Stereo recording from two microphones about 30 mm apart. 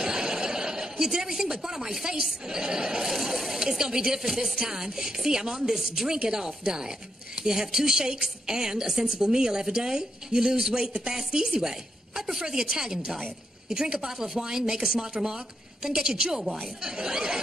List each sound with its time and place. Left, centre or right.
0.0 s chuckle: right
1.4 s a woman's voice: centre